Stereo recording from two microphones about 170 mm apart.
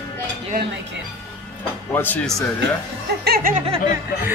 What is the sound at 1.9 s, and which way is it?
Speech, 10° left (ahead or behind).